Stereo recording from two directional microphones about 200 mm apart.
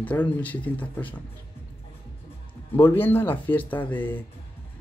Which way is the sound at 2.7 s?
10° left (ahead or behind).